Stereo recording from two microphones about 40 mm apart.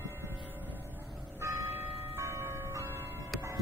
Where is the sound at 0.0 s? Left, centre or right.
Right.